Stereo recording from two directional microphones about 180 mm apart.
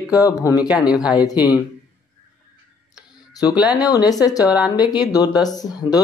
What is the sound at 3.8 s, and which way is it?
Speech, 20° left (ahead or behind).